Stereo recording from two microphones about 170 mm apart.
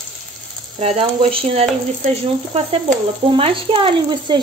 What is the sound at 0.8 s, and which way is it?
Speech, 35° right (ahead or behind).